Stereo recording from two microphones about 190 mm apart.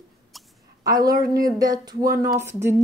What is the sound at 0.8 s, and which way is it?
Speech, 20° right (ahead or behind).